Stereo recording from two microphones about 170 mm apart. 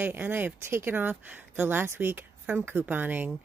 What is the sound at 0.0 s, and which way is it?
Speech, 10° right (ahead or behind).